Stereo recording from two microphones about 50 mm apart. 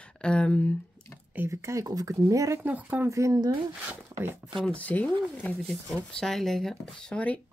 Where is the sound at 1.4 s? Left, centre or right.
Right.